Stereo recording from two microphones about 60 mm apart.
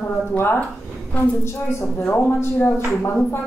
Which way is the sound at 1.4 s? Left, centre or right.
Left.